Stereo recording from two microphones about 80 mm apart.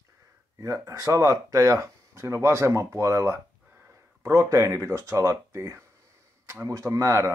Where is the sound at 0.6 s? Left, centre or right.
Right.